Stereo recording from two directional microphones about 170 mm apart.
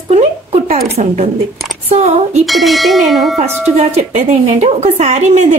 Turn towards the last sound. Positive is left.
turn(degrees=-45)  # may be behind; listen again after turning